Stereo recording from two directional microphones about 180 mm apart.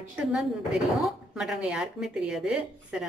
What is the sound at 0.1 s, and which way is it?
A woman's voice, 5° right (ahead or behind).